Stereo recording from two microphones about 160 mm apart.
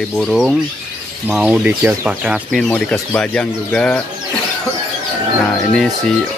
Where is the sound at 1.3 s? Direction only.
5° right (ahead or behind).